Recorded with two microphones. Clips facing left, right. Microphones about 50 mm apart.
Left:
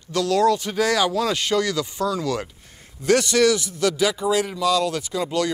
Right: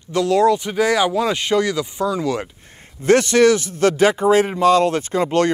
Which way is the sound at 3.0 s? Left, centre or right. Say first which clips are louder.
Right 4 dB; right.